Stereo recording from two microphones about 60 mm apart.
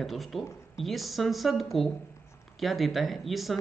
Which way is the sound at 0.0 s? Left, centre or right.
Centre.